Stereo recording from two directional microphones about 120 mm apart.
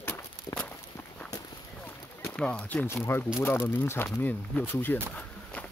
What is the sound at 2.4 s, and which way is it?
Speech, 10° left (ahead or behind).